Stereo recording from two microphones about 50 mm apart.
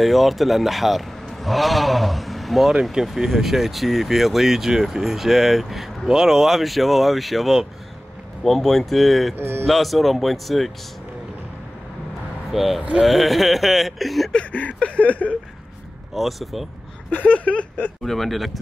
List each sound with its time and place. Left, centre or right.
0.0 s a man's voice: centre
2.7 s speech: centre
9.3 s speech: right
9.7 s speech: centre
12.4 s speech: centre
14.5 s a sound: left
16.2 s speech: centre
17.1 s a sound: left
18.0 s speech: centre